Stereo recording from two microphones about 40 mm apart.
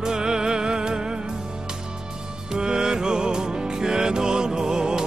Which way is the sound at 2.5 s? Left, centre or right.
Centre.